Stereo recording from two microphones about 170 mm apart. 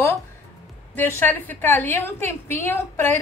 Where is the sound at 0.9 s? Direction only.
10° left (ahead or behind).